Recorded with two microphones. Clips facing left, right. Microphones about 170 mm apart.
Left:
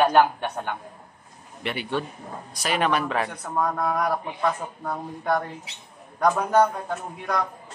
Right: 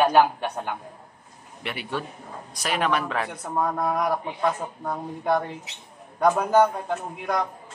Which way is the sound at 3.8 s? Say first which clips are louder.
Even; 20° right (ahead or behind).